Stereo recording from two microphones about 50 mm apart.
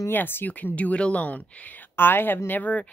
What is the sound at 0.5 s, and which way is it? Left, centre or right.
Speech, left.